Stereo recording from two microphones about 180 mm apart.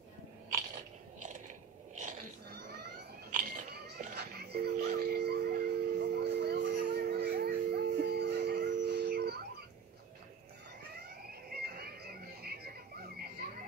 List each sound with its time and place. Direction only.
0.5 s biting: 45° right (ahead or behind)
3.3 s a sound: 60° right (ahead or behind)
11.5 s music: 60° right (ahead or behind)